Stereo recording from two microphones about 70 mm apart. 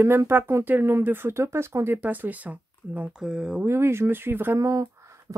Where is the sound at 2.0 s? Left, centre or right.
Right.